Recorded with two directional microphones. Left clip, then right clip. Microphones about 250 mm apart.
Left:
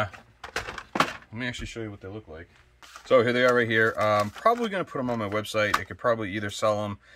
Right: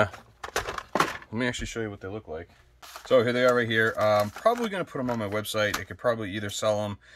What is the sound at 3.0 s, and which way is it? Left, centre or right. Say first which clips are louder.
Speech: left 1 dB; centre.